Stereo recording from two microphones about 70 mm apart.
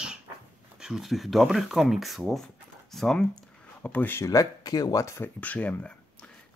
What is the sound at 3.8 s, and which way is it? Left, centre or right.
Speech, left.